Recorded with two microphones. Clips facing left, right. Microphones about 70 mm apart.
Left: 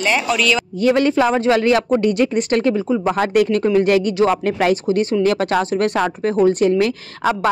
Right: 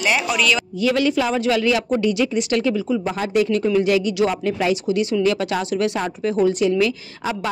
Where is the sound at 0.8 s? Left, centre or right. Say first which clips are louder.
Left 5 dB; left.